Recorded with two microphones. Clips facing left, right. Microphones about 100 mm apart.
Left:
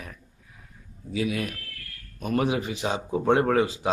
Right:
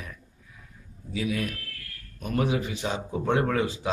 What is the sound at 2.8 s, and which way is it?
Speech, 45° left (ahead or behind).